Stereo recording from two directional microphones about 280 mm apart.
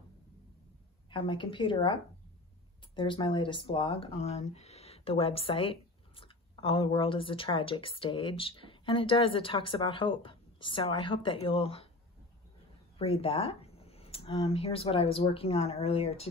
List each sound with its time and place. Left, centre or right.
1.1 s a woman's voice: centre
3.0 s speech: centre
12.9 s speech: left